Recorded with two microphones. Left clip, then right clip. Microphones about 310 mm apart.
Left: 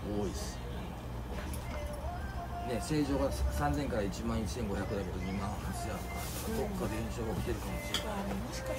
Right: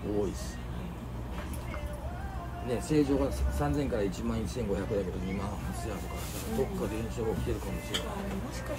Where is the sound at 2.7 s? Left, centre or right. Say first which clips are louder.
Right 6 dB; centre.